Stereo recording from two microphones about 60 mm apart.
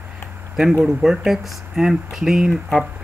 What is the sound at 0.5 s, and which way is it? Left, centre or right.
Speech, centre.